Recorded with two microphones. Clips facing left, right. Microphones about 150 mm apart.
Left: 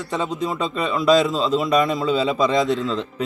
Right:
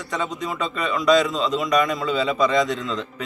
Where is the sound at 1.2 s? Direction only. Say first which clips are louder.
Left 2 dB; centre (ahead or behind).